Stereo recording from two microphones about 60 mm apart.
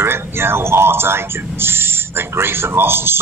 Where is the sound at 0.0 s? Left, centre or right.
Right.